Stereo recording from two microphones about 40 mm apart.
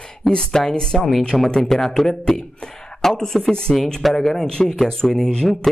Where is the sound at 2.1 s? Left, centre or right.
Left.